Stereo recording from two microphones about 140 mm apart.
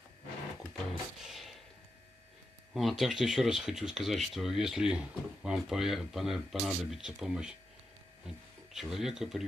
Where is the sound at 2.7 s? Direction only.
Centre (ahead or behind).